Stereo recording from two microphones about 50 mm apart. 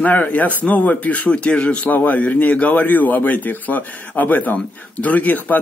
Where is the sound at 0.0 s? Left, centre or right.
Left.